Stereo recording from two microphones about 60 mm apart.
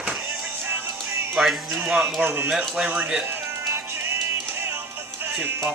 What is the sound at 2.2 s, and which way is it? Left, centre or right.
Speech, right.